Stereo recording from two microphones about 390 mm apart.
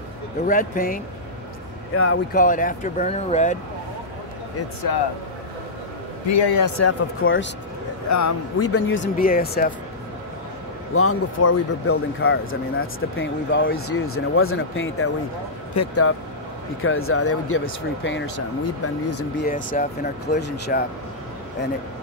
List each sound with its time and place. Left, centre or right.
0.5 s speech: left
2.0 s speech: left
2.4 s speech: centre
4.9 s speech: left
6.2 s a man's voice: left
6.6 s speech: left
8.1 s speech: left
11.0 s speech: left
19.4 s speech: left